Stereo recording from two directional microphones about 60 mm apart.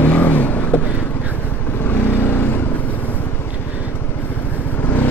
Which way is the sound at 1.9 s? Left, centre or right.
Left.